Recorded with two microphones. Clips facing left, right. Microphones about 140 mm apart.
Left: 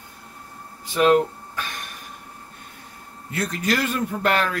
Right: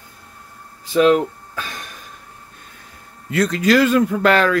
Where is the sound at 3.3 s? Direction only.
90° right.